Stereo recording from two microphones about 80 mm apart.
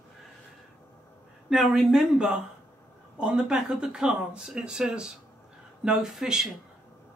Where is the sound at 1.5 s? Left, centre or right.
Centre.